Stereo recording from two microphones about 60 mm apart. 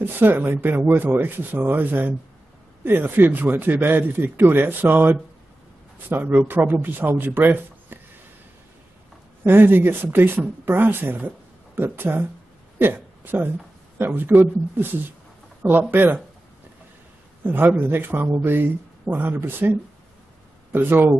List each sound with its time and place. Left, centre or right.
0.0 s speech: right
9.4 s speech: right
17.4 s speech: right
20.7 s speech: right